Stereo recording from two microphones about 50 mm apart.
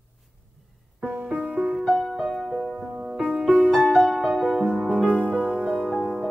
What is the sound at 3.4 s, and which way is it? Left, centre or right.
Music, right.